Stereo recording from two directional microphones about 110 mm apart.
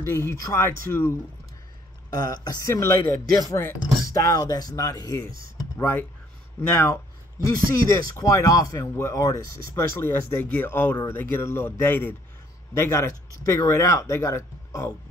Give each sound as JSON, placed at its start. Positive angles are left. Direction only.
{"t": 0.0, "sound": "speech", "side_deg": 25}
{"t": 2.2, "sound": "speech", "side_deg": 35}
{"t": 5.8, "sound": "speech", "side_deg": 25}
{"t": 7.4, "sound": "speech", "side_deg": 35}